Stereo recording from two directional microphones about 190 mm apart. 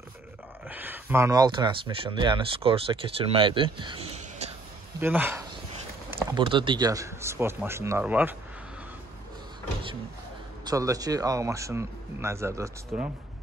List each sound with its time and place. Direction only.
0.7 s speech: 10° right (ahead or behind); by 4.6 s 30° right (ahead or behind)
5.0 s speech: 10° right (ahead or behind)
6.3 s speech: 25° right (ahead or behind); by 8.4 s 10° right (ahead or behind)
10.6 s speech: 20° right (ahead or behind)